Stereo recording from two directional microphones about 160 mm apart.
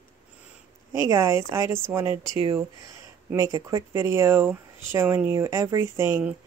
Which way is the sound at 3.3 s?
20° right (ahead or behind).